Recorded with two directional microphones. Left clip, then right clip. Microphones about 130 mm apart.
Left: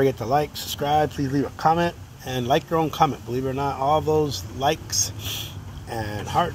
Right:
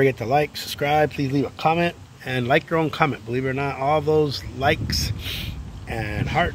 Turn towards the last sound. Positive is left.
turn(degrees=-45)  # may be behind; listen again after turning